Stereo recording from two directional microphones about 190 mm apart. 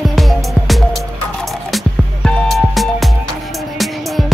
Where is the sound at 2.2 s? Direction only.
Centre (ahead or behind).